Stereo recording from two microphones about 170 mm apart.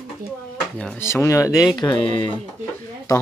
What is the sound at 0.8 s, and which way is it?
Speech, 10° left (ahead or behind).